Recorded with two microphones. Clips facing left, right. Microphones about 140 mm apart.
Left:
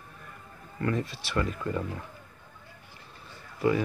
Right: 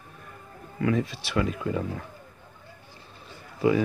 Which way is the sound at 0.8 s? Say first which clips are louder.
Right 4 dB; 10° right (ahead or behind).